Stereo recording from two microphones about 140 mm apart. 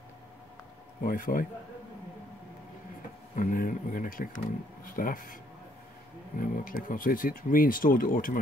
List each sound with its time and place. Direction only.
1.0 s speech: 85° left
3.3 s speech: 75° left (ahead or behind)